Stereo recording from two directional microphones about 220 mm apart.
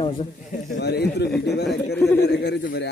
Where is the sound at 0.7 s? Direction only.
50° left (ahead or behind).